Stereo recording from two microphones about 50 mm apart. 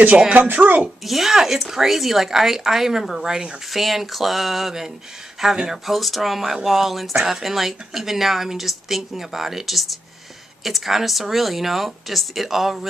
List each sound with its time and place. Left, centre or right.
0.3 s speech: right
1.0 s speech: centre
3.7 s speech: centre